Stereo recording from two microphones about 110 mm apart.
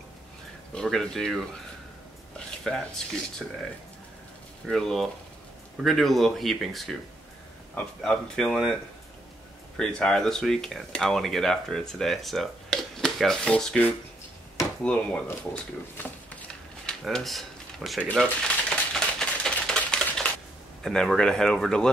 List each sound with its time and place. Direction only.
0.7 s speech: 5° left (ahead or behind)
2.3 s a sound: 5° left (ahead or behind)
3.4 s speech: centre (ahead or behind)
4.6 s speech: 5° left (ahead or behind)
9.8 s speech: 5° left (ahead or behind)
16.8 s a sound: 5° left (ahead or behind)
18.7 s typewriter: 5° left (ahead or behind)
20.8 s speech: 5° left (ahead or behind)